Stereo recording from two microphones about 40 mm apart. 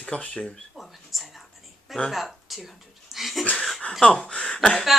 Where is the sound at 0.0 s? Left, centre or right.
Left.